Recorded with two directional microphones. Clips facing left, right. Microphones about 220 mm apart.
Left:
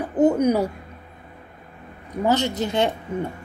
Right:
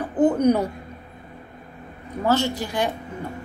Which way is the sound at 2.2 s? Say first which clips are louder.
Left 1 dB; 20° left (ahead or behind).